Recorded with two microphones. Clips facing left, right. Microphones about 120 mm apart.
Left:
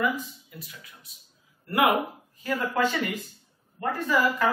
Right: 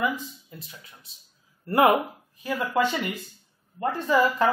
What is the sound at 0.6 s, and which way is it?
Speech, 30° right (ahead or behind).